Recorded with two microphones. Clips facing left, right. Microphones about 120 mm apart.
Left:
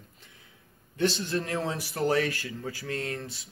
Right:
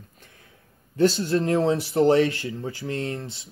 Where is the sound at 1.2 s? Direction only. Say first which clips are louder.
Right 8 dB; 30° right (ahead or behind).